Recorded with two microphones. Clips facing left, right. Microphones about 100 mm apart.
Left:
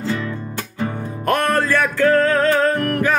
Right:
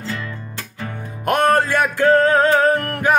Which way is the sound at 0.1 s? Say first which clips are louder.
Left 4 dB; 20° left (ahead or behind).